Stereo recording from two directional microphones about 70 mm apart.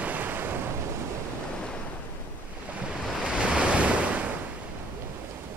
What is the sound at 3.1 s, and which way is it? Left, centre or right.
Waves, centre.